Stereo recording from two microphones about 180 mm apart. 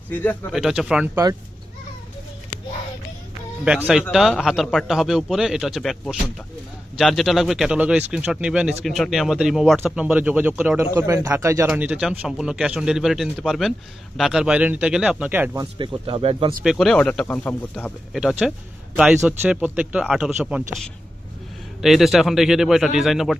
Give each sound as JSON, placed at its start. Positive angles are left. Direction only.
{"t": 0.1, "sound": "speech", "side_deg": 10}
{"t": 0.5, "sound": "a man's voice", "side_deg": -5}
{"t": 3.6, "sound": "a man's voice", "side_deg": -5}
{"t": 15.6, "sound": "speech", "side_deg": -25}
{"t": 16.6, "sound": "a man's voice", "side_deg": 0}
{"t": 18.1, "sound": "a man's voice", "side_deg": -5}